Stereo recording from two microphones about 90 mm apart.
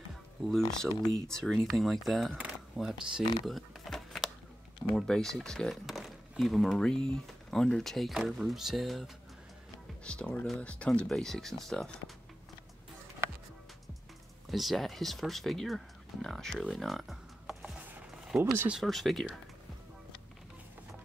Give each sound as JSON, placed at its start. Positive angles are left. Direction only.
{"t": 1.0, "sound": "speech", "side_deg": 10}
{"t": 3.4, "sound": "a sound", "side_deg": 0}
{"t": 4.9, "sound": "speech", "side_deg": 5}
{"t": 10.0, "sound": "speech", "side_deg": 10}
{"t": 14.5, "sound": "speech", "side_deg": 0}
{"t": 16.7, "sound": "music", "side_deg": 0}
{"t": 17.7, "sound": "a sound", "side_deg": -10}
{"t": 18.4, "sound": "speech", "side_deg": -25}
{"t": 18.7, "sound": "speech", "side_deg": 0}